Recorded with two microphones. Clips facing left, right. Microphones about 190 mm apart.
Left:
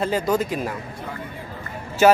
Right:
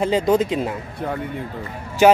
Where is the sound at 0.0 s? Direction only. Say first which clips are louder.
Right 4 dB; 20° right (ahead or behind).